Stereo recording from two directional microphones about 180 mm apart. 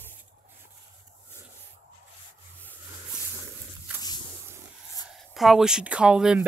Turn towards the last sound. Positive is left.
turn(degrees=-5)  # may be behind; listen again after turning